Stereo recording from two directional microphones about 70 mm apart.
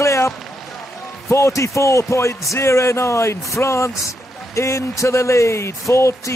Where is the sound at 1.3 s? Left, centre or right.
Left.